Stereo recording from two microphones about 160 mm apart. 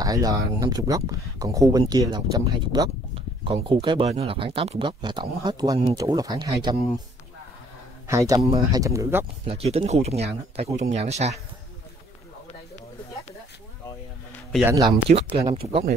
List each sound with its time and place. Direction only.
0.0 s speech: 20° right (ahead or behind)
8.1 s speech: 20° right (ahead or behind)
8.5 s speech: 35° right (ahead or behind)
8.8 s speech: 20° right (ahead or behind)
9.5 s speech: 40° right (ahead or behind)
14.6 s speech: 15° right (ahead or behind)
15.1 s speech: 55° right (ahead or behind)